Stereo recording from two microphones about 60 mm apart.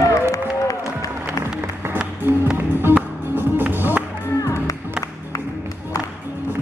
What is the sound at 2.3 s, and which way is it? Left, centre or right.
Music, right.